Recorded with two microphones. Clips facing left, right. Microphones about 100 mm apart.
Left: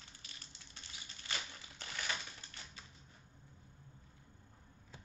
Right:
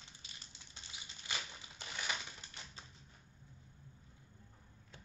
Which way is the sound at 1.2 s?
15° right (ahead or behind).